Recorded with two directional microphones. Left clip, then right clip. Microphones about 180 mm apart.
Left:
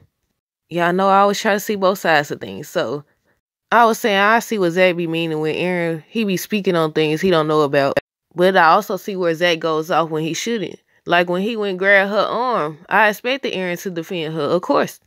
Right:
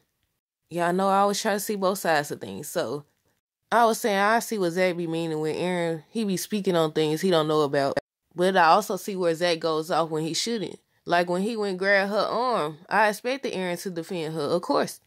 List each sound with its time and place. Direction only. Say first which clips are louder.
0.7 s speech: left 8 dB; 25° left (ahead or behind)